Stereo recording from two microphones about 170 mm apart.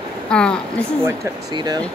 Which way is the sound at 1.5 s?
25° right (ahead or behind).